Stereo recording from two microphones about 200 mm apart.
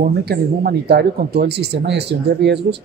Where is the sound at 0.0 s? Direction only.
50° right (ahead or behind).